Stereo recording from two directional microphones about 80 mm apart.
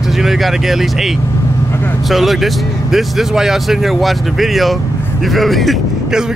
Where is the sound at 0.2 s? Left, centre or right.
Centre.